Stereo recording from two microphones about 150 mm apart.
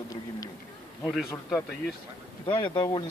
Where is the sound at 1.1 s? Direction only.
Centre (ahead or behind).